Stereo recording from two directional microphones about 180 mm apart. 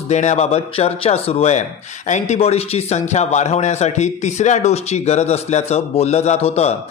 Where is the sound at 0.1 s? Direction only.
40° left (ahead or behind).